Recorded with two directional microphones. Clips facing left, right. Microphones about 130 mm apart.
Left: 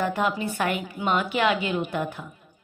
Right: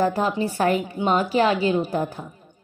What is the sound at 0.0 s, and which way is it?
Speech, 35° right (ahead or behind).